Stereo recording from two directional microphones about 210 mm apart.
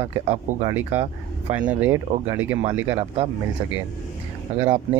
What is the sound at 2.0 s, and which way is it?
Speech, 30° right (ahead or behind).